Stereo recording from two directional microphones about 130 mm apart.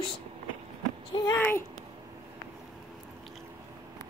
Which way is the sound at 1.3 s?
15° left (ahead or behind).